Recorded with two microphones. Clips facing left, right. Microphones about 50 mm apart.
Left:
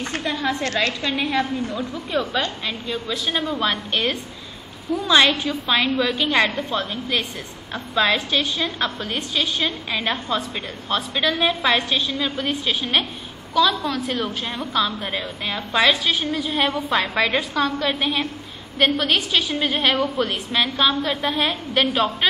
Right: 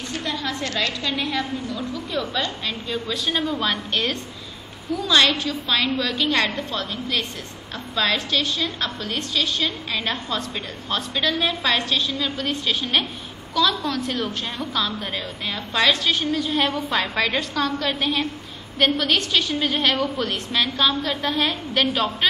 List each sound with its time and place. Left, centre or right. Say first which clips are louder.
0.2 s a sound: left 3 dB; left
1.1 s a woman's voice: left 3 dB; centre
2.6 s a woman's voice: even; centre